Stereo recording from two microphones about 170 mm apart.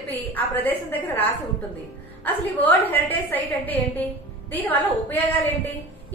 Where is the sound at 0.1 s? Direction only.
10° left (ahead or behind).